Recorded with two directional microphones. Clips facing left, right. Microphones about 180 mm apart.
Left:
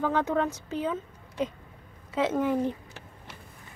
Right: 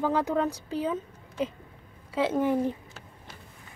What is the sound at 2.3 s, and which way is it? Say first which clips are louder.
Speech: right 2 dB; 20° right (ahead or behind).